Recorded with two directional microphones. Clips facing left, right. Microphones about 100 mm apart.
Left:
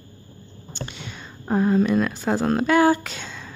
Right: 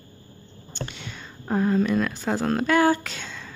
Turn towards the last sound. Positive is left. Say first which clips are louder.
# left 1 dB
turn(degrees=15)  # may be behind; listen again after turning